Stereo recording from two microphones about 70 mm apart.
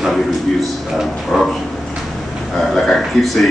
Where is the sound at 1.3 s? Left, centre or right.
Centre.